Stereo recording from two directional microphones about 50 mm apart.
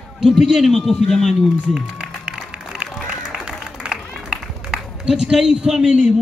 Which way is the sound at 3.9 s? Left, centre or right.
Centre.